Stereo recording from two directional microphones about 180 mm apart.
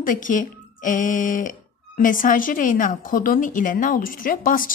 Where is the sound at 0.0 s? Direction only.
50° left (ahead or behind).